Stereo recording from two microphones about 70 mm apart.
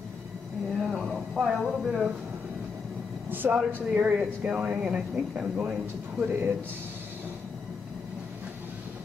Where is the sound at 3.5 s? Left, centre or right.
Centre.